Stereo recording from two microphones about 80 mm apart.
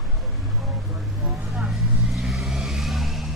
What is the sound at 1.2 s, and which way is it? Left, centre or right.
Vehicle, centre.